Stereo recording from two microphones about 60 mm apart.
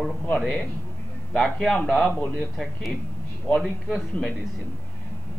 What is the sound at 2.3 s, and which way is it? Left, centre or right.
Speech, centre.